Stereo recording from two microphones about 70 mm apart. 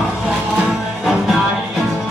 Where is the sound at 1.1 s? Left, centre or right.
Centre.